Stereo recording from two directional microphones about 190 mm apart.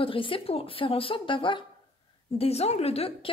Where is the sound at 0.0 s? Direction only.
25° left (ahead or behind).